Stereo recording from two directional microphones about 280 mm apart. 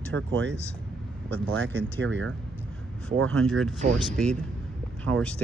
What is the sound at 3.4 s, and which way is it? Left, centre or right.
Speech, centre.